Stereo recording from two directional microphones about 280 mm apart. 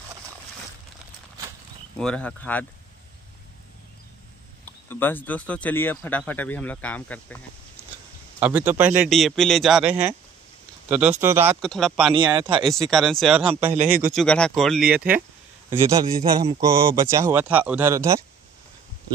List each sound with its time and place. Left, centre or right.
2.0 s speech: centre
4.6 s speech: centre
8.4 s speech: centre
12.1 s speech: centre
12.6 s speech: centre
13.7 s speech: right
14.1 s speech: centre